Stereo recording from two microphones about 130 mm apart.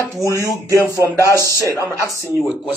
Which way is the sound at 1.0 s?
25° right (ahead or behind).